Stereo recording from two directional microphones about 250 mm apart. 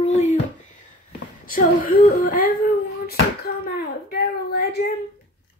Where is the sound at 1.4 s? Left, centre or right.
Left.